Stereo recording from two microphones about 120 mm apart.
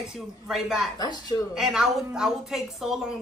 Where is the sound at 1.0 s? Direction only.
35° left (ahead or behind).